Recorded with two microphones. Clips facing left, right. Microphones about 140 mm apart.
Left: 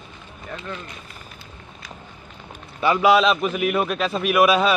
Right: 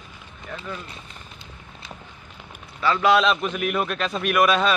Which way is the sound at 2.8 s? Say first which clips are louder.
Left 3 dB; 15° left (ahead or behind).